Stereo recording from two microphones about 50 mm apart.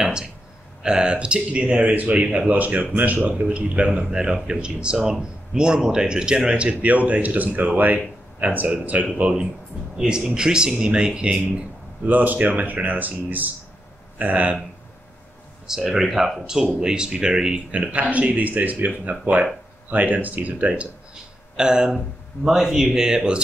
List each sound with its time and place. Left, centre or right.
0.0 s a sound: centre
0.8 s speech: centre; by 9.0 s right
9.2 s speech: right
12.0 s speech: right
15.6 s speech: centre
17.9 s speech: right
21.1 s a sound: centre
22.5 s speech: centre